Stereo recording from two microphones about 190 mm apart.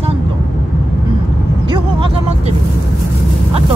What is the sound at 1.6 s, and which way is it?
Speech, 25° right (ahead or behind).